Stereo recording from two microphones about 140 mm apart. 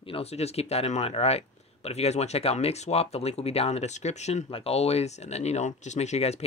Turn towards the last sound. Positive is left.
turn(degrees=50)  # may be behind; listen again after turning